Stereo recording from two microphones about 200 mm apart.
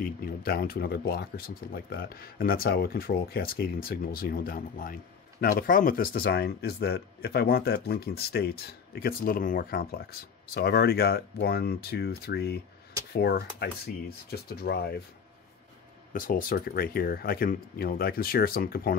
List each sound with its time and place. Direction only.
0.0 s speech: 45° left (ahead or behind)
16.1 s speech: 45° left (ahead or behind)